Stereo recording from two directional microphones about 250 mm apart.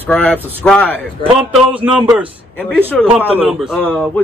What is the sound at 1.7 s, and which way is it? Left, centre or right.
Speech, centre.